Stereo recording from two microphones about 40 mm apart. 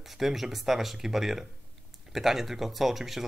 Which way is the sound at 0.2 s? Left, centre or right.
Centre.